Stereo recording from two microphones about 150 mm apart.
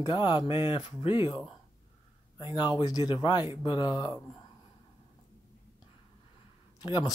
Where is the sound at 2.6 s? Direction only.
30° left (ahead or behind).